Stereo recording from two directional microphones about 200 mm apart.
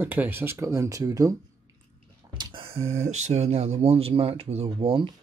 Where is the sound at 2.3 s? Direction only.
25° right (ahead or behind).